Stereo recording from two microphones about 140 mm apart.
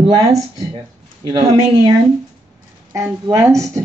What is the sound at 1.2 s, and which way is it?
Speech, 30° right (ahead or behind).